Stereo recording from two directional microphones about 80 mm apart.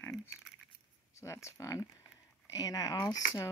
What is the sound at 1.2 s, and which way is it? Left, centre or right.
Speech, left.